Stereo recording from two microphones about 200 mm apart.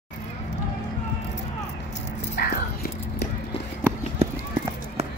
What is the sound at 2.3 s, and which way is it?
Whispering, 50° left (ahead or behind).